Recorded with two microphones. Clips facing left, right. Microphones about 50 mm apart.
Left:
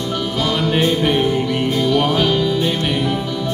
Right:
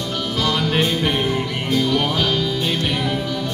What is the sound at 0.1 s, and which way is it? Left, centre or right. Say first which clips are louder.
Music: left 1 dB; centre.